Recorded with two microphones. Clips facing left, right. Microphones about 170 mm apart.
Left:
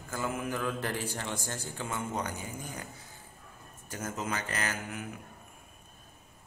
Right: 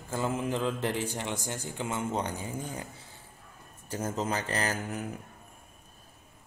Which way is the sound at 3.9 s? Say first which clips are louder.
Right 4 dB; 30° right (ahead or behind).